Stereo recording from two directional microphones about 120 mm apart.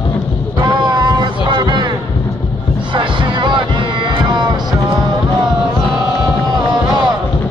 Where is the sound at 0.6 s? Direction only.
35° right (ahead or behind).